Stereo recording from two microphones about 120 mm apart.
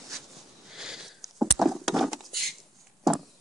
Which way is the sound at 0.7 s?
5° right (ahead or behind).